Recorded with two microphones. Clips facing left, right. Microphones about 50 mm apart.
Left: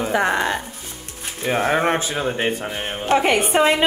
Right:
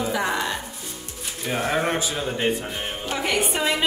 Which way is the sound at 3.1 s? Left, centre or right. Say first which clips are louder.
Left 8 dB; left.